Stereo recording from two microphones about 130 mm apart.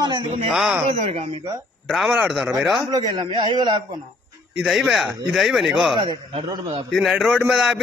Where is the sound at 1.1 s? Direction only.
55° right (ahead or behind).